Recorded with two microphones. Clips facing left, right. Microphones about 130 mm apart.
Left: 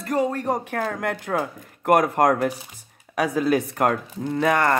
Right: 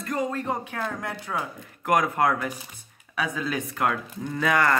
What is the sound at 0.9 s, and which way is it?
Speech, 65° left (ahead or behind).